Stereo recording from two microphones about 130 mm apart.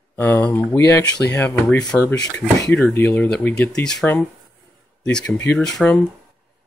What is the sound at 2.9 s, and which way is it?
Speech, 15° left (ahead or behind).